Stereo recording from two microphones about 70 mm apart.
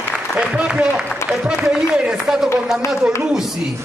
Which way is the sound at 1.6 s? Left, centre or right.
Centre.